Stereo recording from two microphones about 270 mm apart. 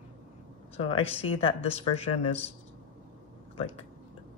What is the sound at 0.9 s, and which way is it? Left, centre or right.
Speech, left.